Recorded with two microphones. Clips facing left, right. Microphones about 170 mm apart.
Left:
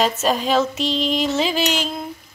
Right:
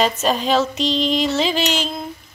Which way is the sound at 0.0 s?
5° left (ahead or behind).